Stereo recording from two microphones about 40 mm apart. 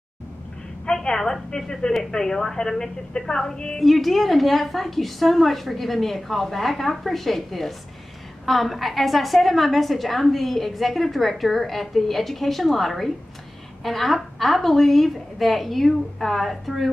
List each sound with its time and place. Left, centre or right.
0.8 s a woman's voice: centre
3.8 s a woman's voice: centre